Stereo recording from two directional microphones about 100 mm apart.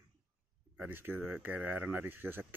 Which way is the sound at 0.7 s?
20° right (ahead or behind).